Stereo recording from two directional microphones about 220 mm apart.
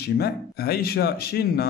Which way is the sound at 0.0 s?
45° left (ahead or behind).